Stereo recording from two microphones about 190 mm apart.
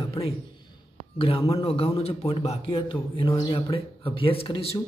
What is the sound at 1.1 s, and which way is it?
A man's voice, 30° left (ahead or behind).